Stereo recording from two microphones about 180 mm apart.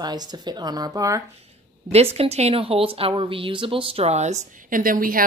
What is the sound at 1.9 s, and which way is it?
A woman's voice, 35° right (ahead or behind).